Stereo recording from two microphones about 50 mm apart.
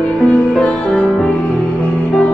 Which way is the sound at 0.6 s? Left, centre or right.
Centre.